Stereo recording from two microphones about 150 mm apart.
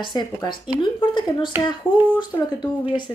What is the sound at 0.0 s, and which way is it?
Speech, 30° left (ahead or behind).